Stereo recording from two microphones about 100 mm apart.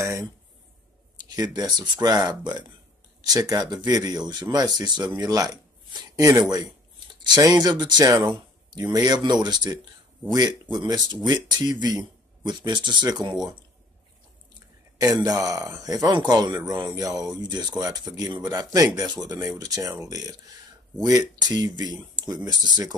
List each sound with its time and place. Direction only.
0.0 s a sound: 30° right (ahead or behind)
1.1 s speech: 40° right (ahead or behind)
15.0 s speech: 35° right (ahead or behind)